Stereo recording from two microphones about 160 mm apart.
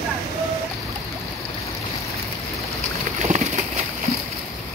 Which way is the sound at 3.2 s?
50° right (ahead or behind).